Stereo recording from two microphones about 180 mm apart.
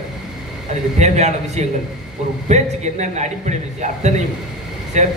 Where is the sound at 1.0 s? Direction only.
40° right (ahead or behind).